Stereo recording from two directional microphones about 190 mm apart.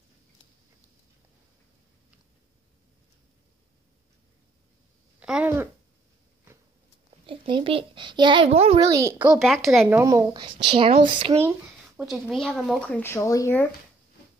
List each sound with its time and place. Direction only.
5.2 s speech: 5° right (ahead or behind)
7.2 s a child's voice: 25° right (ahead or behind)
8.7 s a child's voice: 15° right (ahead or behind)
9.4 s speech: centre (ahead or behind)
9.8 s a child's voice: 15° right (ahead or behind)
12.0 s speech: centre (ahead or behind); by 13.7 s 15° left (ahead or behind)